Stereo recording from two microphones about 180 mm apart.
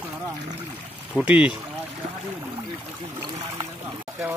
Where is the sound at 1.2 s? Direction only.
5° right (ahead or behind).